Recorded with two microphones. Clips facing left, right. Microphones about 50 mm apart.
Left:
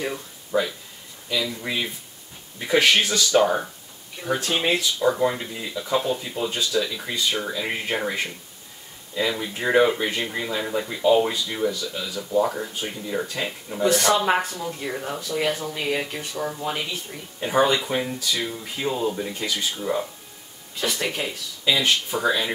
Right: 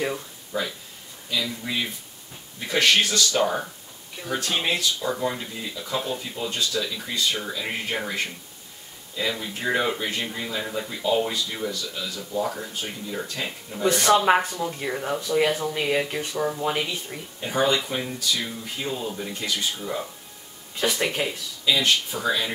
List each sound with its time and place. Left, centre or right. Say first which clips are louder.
0.5 s speech: left 5 dB; left
2.7 s speech: left 2 dB; centre
9.4 s speech: left 8 dB; centre
17.4 s speech: left 3 dB; centre
20.8 s speech: right 2 dB; centre
21.7 s speech: left 1 dB; centre